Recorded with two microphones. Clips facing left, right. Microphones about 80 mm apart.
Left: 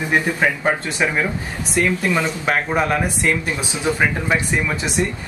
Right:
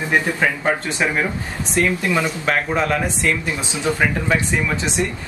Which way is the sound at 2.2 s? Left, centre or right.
Centre.